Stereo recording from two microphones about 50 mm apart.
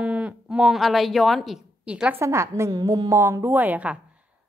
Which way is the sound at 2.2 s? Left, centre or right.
Right.